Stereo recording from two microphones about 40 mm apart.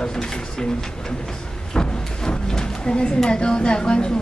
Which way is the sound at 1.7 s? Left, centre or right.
Centre.